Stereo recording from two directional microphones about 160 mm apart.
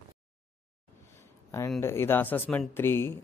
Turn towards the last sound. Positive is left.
turn(degrees=15)  # may be behind; listen again after turning